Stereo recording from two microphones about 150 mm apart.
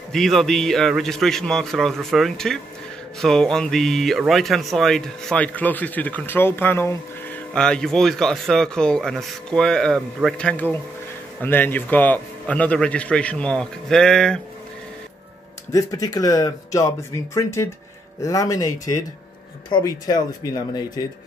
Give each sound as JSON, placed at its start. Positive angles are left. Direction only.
{"t": 0.1, "sound": "speech", "side_deg": 0}
{"t": 7.5, "sound": "speech", "side_deg": 5}
{"t": 15.7, "sound": "speech", "side_deg": 25}